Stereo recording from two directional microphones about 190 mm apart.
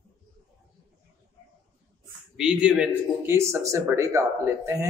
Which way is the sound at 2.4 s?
5° right (ahead or behind).